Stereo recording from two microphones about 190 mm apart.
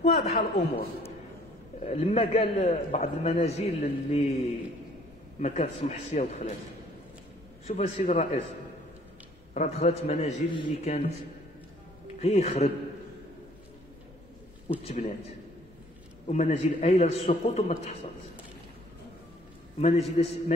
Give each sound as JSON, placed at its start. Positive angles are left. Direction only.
{"t": 0.0, "sound": "a man's voice", "side_deg": 35}
{"t": 1.8, "sound": "a man's voice", "side_deg": 35}
{"t": 7.7, "sound": "a man's voice", "side_deg": 40}
{"t": 9.5, "sound": "a man's voice", "side_deg": 35}
{"t": 12.2, "sound": "a man's voice", "side_deg": 30}
{"t": 14.9, "sound": "a man's voice", "side_deg": 35}
{"t": 16.3, "sound": "a man's voice", "side_deg": 35}
{"t": 19.8, "sound": "a man's voice", "side_deg": 35}